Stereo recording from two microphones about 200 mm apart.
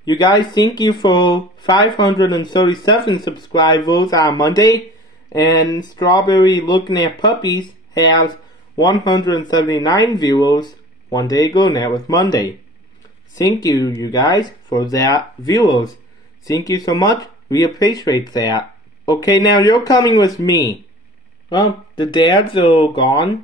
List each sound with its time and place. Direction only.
0.0 s speech: 20° left (ahead or behind)